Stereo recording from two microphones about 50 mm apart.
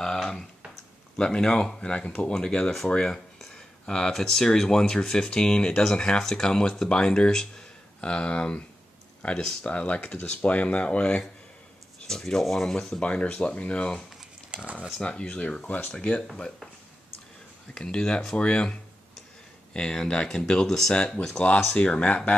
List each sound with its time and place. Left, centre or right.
0.0 s a sound: centre
1.1 s speech: centre
9.7 s speech: left
12.1 s speech: centre
13.0 s speech: left
14.5 s speech: right
15.0 s speech: left
17.7 s speech: centre